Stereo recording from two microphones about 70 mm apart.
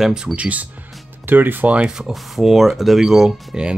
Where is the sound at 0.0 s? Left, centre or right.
Centre.